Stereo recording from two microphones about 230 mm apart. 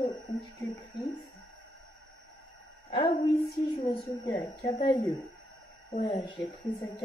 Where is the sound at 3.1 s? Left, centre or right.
Left.